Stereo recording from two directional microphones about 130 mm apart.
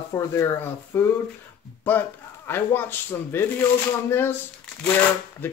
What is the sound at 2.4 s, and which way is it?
Speech, 15° left (ahead or behind).